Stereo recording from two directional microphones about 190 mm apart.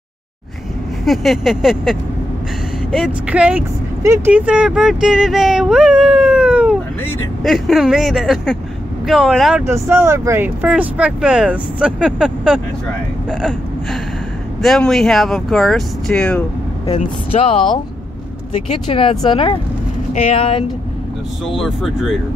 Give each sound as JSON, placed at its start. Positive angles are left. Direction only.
{"t": 1.0, "sound": "speech", "side_deg": 0}
{"t": 7.0, "sound": "speech", "side_deg": 10}
{"t": 7.4, "sound": "speech", "side_deg": 0}
{"t": 9.7, "sound": "speech", "side_deg": -15}
{"t": 16.8, "sound": "speech", "side_deg": 30}
{"t": 18.9, "sound": "speech", "side_deg": 30}
{"t": 21.5, "sound": "speech", "side_deg": 0}